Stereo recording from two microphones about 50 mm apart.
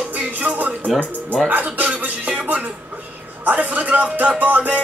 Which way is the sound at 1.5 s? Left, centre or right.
Right.